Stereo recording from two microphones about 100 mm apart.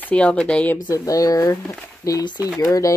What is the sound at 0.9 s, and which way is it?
Speech, 35° left (ahead or behind).